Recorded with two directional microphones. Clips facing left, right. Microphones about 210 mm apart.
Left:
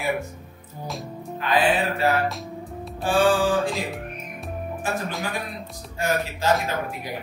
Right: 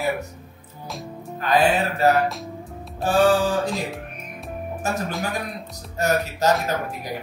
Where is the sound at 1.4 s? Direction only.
40° right (ahead or behind).